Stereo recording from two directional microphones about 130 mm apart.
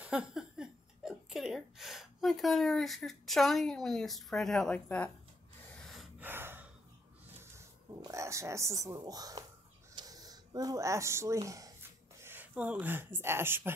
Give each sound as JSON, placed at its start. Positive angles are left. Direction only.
{"t": 0.0, "sound": "speech", "side_deg": -5}
{"t": 5.8, "sound": "gasp", "side_deg": 0}
{"t": 6.1, "sound": "gasp", "side_deg": -15}
{"t": 8.0, "sound": "speech", "side_deg": -25}
{"t": 9.9, "sound": "a sound", "side_deg": -30}